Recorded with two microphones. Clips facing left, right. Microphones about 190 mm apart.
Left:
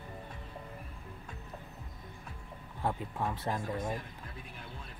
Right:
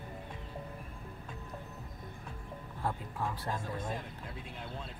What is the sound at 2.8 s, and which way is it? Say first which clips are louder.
Speech: left 2 dB; 20° left (ahead or behind).